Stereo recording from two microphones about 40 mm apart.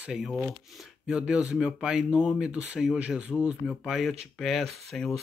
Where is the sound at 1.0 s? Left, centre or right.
Right.